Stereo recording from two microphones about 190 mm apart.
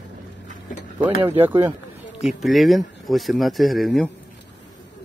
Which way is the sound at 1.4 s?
10° right (ahead or behind).